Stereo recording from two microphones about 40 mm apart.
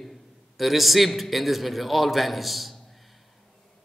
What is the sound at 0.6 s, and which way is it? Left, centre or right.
A man's voice, centre.